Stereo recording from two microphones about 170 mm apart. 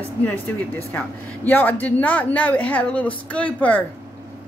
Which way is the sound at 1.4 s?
10° left (ahead or behind).